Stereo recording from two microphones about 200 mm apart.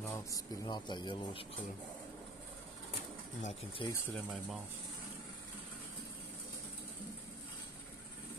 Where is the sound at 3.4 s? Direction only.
35° left (ahead or behind).